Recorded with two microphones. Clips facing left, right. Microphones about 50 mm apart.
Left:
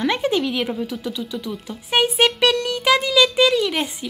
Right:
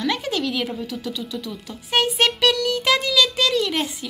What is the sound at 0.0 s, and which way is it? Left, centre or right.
Speech, left.